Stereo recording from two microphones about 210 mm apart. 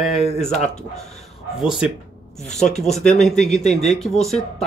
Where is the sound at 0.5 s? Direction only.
30° left (ahead or behind).